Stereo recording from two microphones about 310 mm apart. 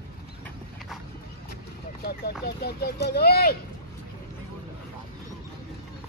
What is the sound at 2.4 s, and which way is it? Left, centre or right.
Speech, left.